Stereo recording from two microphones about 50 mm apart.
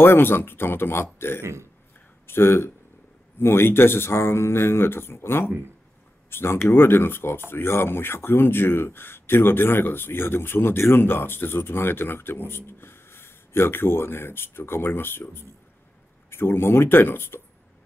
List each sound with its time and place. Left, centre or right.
0.0 s speech: left
1.4 s a man's voice: right
2.2 s speech: left